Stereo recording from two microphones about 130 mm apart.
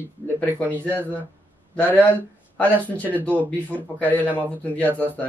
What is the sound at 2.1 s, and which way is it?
Speech, 15° left (ahead or behind).